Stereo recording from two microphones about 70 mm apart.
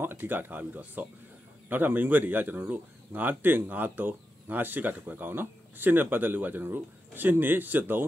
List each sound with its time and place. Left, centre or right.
0.0 s speech: right